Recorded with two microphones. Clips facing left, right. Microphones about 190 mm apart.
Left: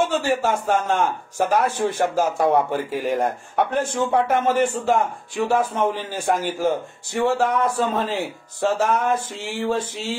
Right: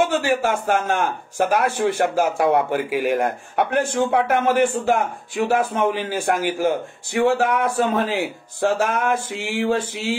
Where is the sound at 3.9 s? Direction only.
65° right (ahead or behind).